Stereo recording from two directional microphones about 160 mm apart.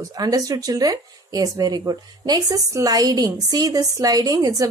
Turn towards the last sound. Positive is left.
turn(degrees=-20)  # may be behind; listen again after turning